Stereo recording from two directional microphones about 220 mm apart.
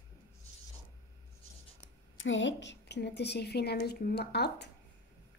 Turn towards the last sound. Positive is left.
turn(degrees=50)  # may be behind; listen again after turning